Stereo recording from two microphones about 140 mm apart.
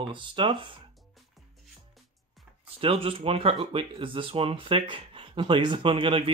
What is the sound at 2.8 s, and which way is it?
Speech, 45° right (ahead or behind).